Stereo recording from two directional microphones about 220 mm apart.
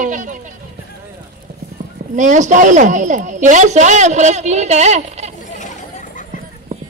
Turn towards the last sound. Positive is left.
turn(degrees=35)  # may be behind; listen again after turning